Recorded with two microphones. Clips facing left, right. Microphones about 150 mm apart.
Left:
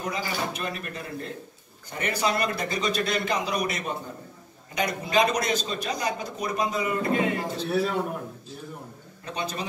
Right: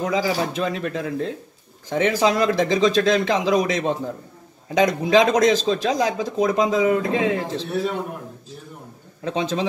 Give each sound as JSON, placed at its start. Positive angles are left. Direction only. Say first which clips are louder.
{"t": 0.0, "sound": "a man's voice", "louder": "right 8 dB", "side_deg": -90}
{"t": 9.2, "sound": "a man's voice", "louder": "right 9 dB", "side_deg": -90}